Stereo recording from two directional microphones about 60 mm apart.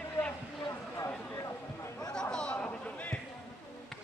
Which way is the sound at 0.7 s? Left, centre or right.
Left.